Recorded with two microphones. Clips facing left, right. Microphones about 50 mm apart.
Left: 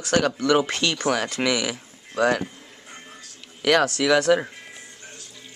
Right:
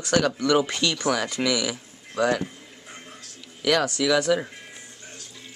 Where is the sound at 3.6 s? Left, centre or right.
Left.